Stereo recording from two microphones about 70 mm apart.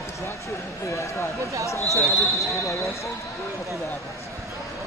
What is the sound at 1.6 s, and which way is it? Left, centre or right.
Speech, left.